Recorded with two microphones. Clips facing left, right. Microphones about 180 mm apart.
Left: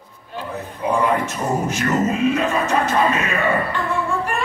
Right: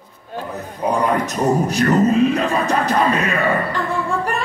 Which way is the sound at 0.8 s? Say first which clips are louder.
Right 1 dB; 40° right (ahead or behind).